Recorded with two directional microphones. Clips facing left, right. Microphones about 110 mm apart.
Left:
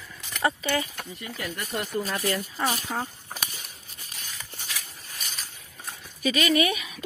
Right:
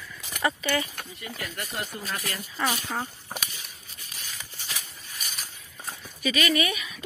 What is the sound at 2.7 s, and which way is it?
Speech, 5° left (ahead or behind).